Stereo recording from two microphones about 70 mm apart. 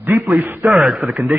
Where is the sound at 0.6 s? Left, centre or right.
Centre.